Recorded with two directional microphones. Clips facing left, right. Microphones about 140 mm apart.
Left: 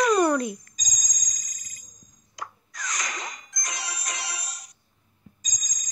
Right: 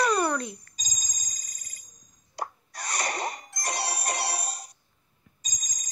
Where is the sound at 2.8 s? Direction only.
60° right (ahead or behind).